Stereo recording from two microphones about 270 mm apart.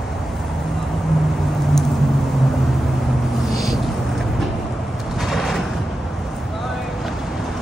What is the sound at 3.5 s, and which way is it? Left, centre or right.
Vehicle, centre.